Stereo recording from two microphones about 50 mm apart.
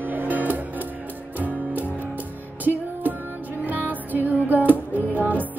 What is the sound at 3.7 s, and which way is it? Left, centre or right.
Music, right.